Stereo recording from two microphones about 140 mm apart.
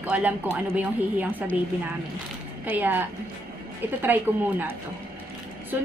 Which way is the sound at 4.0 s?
15° right (ahead or behind).